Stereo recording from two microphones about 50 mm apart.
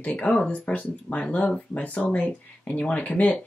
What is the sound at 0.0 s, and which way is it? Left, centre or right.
Speech, left.